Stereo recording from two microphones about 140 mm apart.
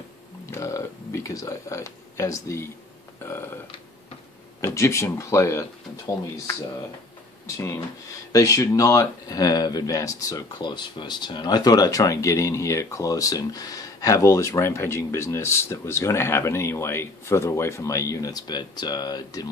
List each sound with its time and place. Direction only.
0.5 s speech: 20° left (ahead or behind)
3.3 s burping: 15° left (ahead or behind)
4.6 s speech: 20° left (ahead or behind)
7.4 s speech: 20° left (ahead or behind)